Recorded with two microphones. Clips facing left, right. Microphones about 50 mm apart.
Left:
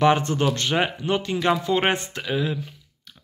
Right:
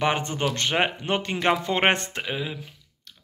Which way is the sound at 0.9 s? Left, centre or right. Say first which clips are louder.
Left 2 dB; right.